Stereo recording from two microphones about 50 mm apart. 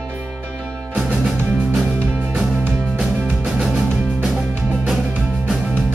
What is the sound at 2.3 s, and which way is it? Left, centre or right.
Music, centre.